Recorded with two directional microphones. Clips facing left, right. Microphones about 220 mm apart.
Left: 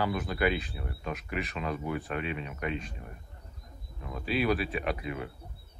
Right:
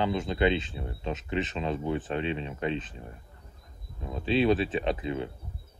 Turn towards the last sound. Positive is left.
turn(degrees=-25)  # may be behind; listen again after turning